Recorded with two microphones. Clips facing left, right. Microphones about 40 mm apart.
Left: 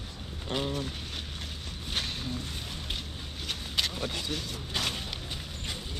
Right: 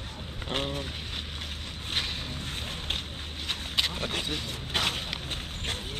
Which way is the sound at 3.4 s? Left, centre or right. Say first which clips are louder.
Right 2 dB; right.